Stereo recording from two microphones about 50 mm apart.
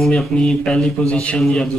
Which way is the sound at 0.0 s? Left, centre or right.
Centre.